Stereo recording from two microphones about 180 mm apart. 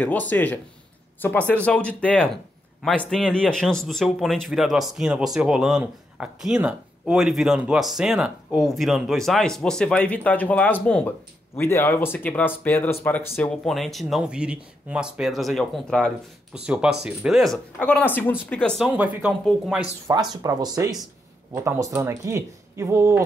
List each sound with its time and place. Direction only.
0.0 s a man's voice: 10° left (ahead or behind)
20.1 s speech: 20° right (ahead or behind)